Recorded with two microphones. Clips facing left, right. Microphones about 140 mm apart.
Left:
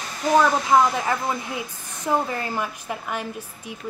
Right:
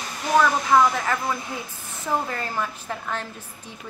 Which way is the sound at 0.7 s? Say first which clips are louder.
Left 1 dB; 15° left (ahead or behind).